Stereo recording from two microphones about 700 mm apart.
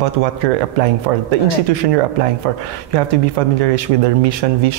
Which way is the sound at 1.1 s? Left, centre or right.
Right.